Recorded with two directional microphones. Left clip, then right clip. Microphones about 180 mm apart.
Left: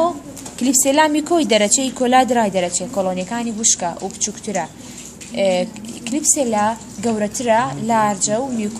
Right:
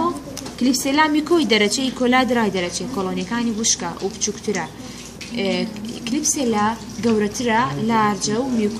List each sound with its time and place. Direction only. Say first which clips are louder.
0.6 s speech: left 3 dB; 50° left (ahead or behind)